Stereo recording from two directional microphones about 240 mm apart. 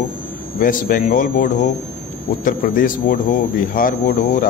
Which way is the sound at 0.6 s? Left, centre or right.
Left.